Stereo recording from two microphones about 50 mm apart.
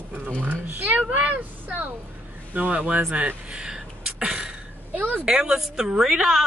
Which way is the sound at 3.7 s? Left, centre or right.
Centre.